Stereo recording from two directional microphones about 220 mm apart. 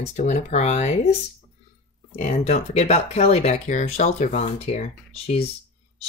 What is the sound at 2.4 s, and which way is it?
Speech, 30° left (ahead or behind).